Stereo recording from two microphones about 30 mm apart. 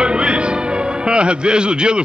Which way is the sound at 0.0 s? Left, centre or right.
Right.